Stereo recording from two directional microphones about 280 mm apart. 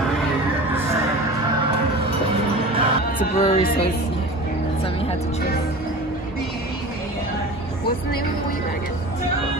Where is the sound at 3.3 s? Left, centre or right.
Left.